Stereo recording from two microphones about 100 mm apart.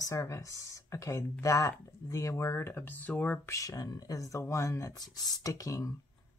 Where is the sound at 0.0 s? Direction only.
30° left (ahead or behind).